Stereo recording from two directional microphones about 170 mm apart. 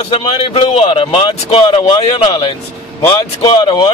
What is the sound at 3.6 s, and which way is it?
Speech, 25° left (ahead or behind).